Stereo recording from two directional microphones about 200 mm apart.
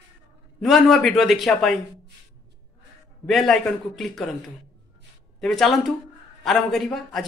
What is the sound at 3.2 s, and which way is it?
Speech, centre (ahead or behind).